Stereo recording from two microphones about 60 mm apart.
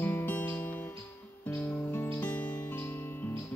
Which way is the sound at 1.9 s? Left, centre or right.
Left.